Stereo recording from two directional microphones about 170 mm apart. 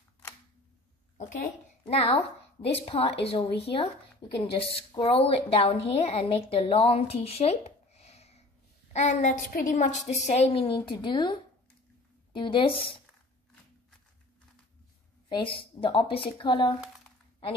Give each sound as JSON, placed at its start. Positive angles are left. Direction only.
{"t": 1.1, "sound": "a woman's voice", "side_deg": 45}
{"t": 15.2, "sound": "a woman's voice", "side_deg": 30}